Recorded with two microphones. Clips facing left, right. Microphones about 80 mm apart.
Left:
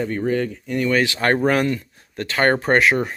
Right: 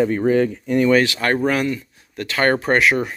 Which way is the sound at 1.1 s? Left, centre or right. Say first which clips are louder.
Left 1 dB; left.